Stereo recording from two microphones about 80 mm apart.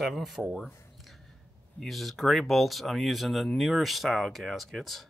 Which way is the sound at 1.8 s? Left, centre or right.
Centre.